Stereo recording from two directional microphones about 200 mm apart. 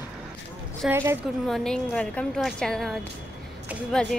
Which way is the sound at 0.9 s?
10° right (ahead or behind).